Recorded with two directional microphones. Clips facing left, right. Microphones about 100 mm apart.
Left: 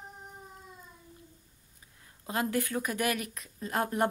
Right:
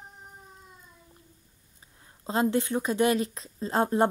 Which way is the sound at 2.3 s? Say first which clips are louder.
Right 5 dB; 25° right (ahead or behind).